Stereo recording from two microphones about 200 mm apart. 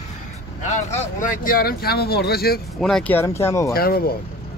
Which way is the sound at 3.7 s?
50° left (ahead or behind).